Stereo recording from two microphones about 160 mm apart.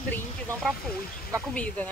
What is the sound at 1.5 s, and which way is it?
Speech, 10° left (ahead or behind).